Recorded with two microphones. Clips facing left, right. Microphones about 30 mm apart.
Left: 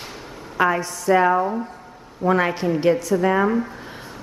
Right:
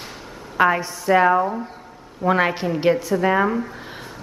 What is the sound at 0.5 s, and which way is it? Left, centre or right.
Speech, centre.